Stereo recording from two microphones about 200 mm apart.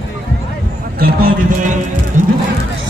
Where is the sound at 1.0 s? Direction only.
45° right (ahead or behind).